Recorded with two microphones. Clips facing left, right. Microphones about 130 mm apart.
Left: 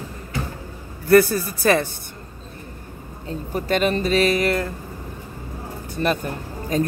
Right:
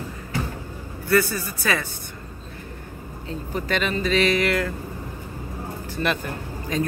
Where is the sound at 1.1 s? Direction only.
50° left (ahead or behind).